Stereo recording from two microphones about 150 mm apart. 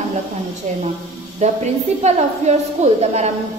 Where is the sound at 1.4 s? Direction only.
50° right (ahead or behind).